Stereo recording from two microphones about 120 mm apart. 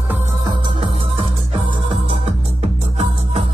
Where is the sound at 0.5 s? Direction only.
45° right (ahead or behind).